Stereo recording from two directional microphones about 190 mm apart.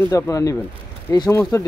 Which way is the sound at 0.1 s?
20° left (ahead or behind).